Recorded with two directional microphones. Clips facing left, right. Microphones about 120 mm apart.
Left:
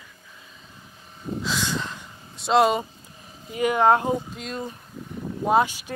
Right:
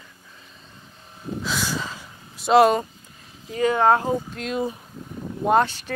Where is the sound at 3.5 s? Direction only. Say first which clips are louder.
Right 1 dB; 15° left (ahead or behind).